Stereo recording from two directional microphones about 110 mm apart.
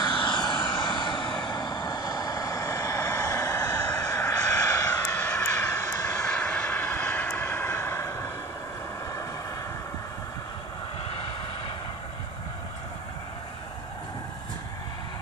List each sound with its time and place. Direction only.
0.0 s vehicle: 45° left (ahead or behind); by 6.1 s 25° left (ahead or behind)
6.1 s vehicle: 15° left (ahead or behind)